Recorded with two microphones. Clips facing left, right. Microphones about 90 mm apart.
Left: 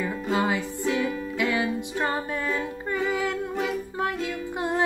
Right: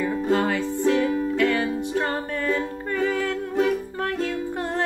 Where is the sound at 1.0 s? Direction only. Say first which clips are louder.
Right 6 dB; 40° right (ahead or behind).